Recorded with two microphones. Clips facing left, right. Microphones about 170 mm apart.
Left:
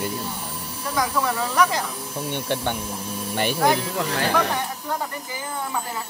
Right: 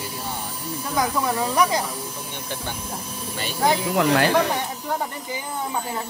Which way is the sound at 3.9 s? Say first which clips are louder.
Right 6 dB; 70° right (ahead or behind).